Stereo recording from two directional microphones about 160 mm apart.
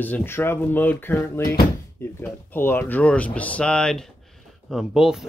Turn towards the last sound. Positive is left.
turn(degrees=-5)  # may be behind; listen again after turning